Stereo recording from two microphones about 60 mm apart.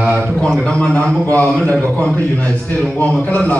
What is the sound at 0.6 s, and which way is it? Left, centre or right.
Speech, centre.